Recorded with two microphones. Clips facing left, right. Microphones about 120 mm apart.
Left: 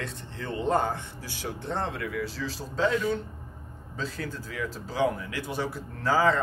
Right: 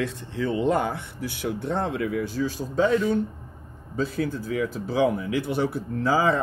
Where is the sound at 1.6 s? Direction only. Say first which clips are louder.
Right 4 dB; 50° right (ahead or behind).